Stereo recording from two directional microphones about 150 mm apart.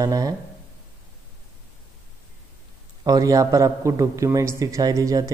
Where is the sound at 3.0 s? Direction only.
25° right (ahead or behind).